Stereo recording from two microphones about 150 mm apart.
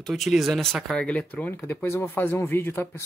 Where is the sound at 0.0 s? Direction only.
Centre (ahead or behind).